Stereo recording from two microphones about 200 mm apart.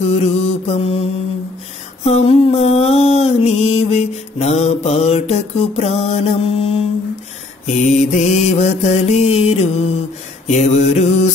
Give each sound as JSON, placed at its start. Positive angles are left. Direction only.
{"t": 0.0, "sound": "mantra", "side_deg": 30}